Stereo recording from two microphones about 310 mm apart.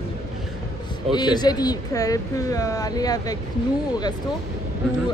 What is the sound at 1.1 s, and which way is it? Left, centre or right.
Speech, centre.